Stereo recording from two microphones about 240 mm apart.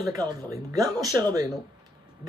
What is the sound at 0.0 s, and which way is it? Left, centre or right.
Speech, centre.